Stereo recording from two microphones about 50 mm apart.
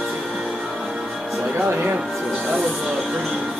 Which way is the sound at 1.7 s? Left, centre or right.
Right.